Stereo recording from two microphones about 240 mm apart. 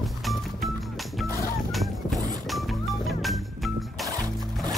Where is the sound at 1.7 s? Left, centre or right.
Centre.